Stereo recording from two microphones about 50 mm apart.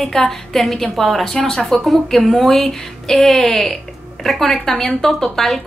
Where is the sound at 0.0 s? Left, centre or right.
Centre.